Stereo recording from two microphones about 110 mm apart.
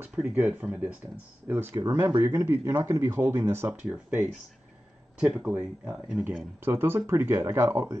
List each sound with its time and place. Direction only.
0.0 s speech: 15° right (ahead or behind)